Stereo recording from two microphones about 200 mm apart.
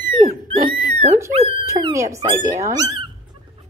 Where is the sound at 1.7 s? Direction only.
15° right (ahead or behind).